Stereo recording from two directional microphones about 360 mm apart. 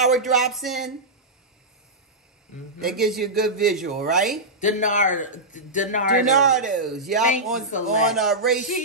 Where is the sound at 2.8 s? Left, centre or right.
Centre.